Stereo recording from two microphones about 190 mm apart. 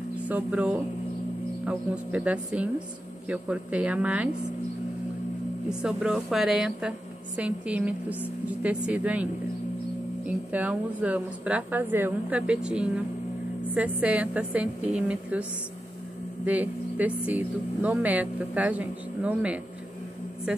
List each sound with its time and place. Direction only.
0.2 s speech: 5° right (ahead or behind)
5.7 s a woman's voice: 5° right (ahead or behind)
16.4 s speech: 10° right (ahead or behind)